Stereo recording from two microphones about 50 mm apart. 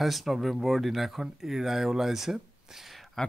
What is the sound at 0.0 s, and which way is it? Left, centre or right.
Speech, centre.